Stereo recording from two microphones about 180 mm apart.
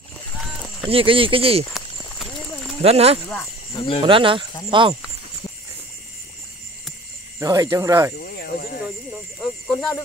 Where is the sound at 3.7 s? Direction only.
30° left (ahead or behind).